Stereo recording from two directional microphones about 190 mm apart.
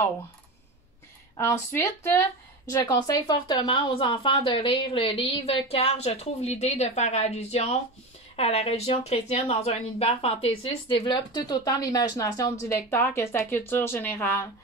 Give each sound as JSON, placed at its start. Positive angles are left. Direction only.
{"t": 1.3, "sound": "speech", "side_deg": 15}